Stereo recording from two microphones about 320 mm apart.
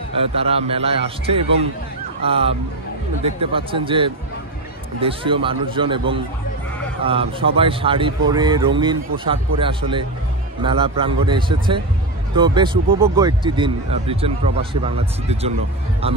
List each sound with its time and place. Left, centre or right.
0.2 s speech: centre